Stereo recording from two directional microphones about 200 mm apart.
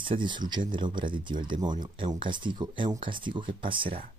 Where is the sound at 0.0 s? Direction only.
25° right (ahead or behind).